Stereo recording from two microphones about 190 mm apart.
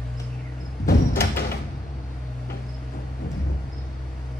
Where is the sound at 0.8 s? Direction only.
50° left (ahead or behind).